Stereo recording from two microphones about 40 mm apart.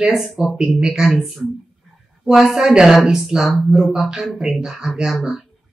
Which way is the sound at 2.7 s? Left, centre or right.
Centre.